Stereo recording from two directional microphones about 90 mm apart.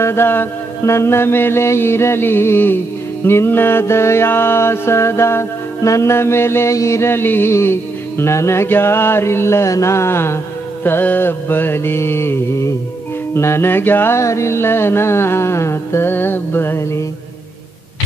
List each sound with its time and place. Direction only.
0.0 s mantra: 25° left (ahead or behind)